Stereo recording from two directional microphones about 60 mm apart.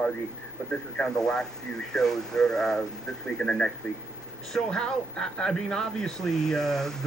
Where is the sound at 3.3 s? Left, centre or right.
Centre.